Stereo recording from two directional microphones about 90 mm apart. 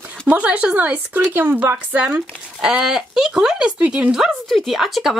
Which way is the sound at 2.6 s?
5° right (ahead or behind).